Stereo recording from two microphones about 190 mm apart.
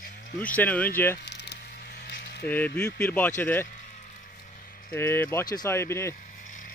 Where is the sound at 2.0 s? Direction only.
65° left (ahead or behind).